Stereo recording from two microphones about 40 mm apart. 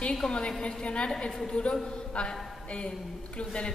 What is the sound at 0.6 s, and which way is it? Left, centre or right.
Speech, left.